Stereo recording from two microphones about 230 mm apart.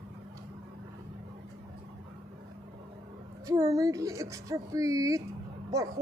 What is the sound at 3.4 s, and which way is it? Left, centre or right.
A child's voice, centre.